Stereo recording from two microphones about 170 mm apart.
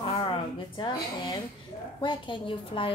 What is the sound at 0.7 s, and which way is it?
A woman's voice, 25° left (ahead or behind).